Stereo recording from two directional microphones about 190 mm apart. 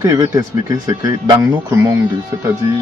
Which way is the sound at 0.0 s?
15° right (ahead or behind).